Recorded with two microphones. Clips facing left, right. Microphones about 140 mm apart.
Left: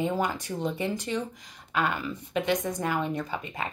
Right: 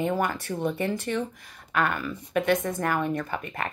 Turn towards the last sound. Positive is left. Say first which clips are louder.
# right 2 dB
turn(degrees=15)  # may be behind; listen again after turning